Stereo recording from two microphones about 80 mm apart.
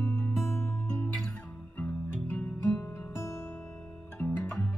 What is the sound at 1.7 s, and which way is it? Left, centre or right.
Music, centre.